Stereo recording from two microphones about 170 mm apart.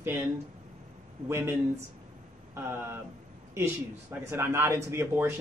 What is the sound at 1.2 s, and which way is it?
Speech, 15° right (ahead or behind).